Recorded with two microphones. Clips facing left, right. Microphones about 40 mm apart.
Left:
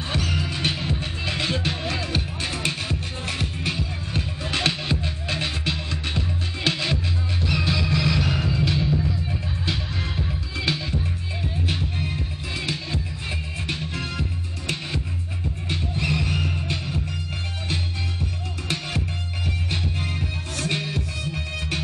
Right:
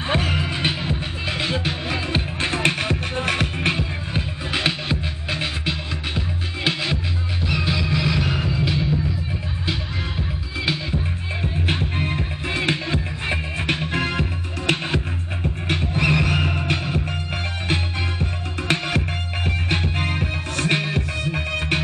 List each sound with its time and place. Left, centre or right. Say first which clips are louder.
0.1 s music: right 5 dB; right
2.0 s music: right 4 dB; right
4.1 s music: even; centre
11.6 s music: right 5 dB; right
15.7 s music: right 6 dB; right
18.2 s music: right 5 dB; right